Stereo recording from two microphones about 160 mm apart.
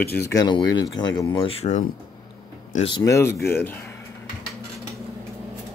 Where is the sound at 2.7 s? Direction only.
35° left (ahead or behind).